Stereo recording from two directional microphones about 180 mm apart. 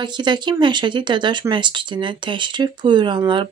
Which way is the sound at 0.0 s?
25° right (ahead or behind).